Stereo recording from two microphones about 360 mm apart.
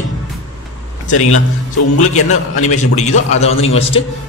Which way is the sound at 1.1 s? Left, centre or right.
Left.